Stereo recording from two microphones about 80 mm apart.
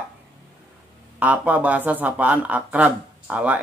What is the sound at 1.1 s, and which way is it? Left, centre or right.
Speech, centre.